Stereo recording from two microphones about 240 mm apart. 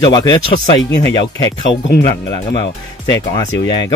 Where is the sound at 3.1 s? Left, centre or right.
Centre.